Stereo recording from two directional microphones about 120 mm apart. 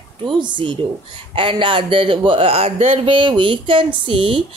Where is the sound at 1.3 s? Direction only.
45° right (ahead or behind).